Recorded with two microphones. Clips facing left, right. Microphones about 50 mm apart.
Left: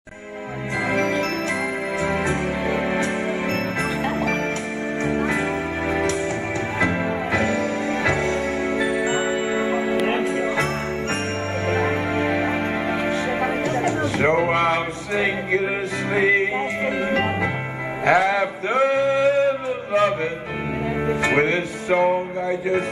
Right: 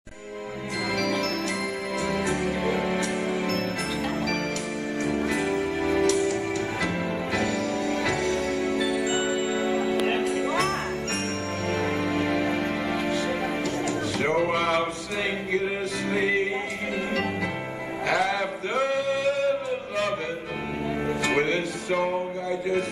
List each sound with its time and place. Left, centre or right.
0.9 s music: left
5.0 s music: left
7.3 s music: left
11.7 s music: left
13.8 s a sound: left
17.1 s music: left
21.1 s music: left